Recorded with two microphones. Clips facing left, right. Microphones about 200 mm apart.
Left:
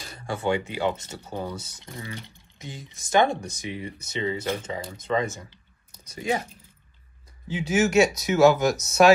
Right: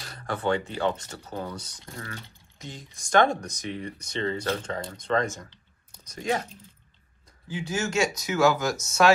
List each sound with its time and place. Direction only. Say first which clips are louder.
0.2 s speech: left 1 dB; 10° left (ahead or behind)
0.9 s speech: left 2 dB; 25° left (ahead or behind)
1.2 s speech: left 2 dB; 10° left (ahead or behind)
1.7 s speech: left 2 dB; 20° left (ahead or behind)
7.4 s speech: left 7 dB; 20° left (ahead or behind)